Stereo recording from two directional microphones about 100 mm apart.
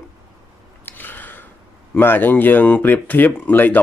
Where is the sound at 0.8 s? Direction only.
20° left (ahead or behind).